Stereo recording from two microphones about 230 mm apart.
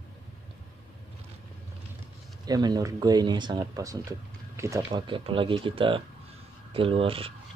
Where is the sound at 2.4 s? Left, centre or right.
Centre.